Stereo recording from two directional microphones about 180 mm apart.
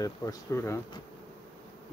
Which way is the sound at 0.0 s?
20° left (ahead or behind).